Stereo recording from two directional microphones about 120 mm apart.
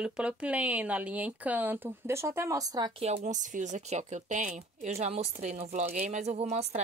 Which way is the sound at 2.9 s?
65° right (ahead or behind).